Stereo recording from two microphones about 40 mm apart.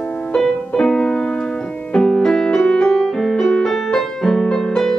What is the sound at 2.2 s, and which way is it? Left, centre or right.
Music, centre.